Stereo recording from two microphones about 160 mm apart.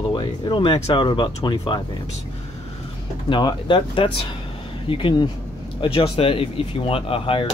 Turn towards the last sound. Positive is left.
turn(degrees=35)  # may be behind; listen again after turning